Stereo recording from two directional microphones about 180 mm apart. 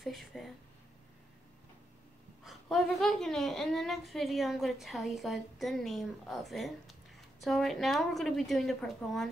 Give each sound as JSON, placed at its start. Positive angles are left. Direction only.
{"t": 0.0, "sound": "speech", "side_deg": 0}
{"t": 2.4, "sound": "a woman's voice", "side_deg": 0}